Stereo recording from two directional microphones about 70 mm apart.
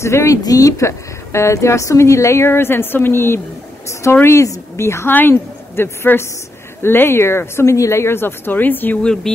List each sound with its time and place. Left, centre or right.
0.0 s a woman's voice: left
0.4 s a woman's voice: left
9.0 s speech: centre